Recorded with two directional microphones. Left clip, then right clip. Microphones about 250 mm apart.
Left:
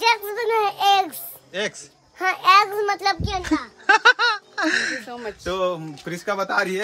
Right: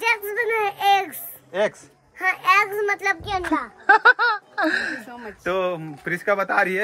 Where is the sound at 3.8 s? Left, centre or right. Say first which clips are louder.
Right 1 dB; centre.